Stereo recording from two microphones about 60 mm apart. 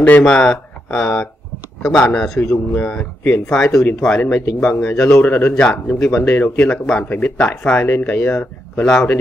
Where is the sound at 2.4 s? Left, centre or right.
Left.